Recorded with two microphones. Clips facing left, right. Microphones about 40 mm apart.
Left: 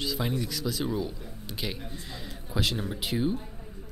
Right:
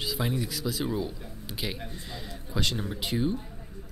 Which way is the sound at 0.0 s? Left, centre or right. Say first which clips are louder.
Even; centre.